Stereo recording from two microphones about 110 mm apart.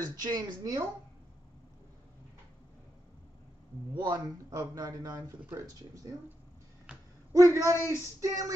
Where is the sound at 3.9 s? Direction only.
35° right (ahead or behind).